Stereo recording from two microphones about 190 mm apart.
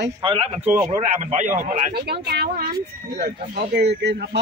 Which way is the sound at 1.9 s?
55° right (ahead or behind).